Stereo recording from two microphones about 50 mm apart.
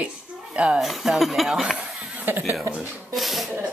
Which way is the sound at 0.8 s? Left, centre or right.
Centre.